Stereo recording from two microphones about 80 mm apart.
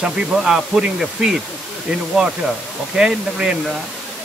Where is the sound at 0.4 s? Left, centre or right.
Centre.